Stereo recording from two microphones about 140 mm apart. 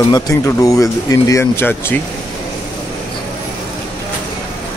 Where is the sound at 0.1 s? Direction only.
25° left (ahead or behind).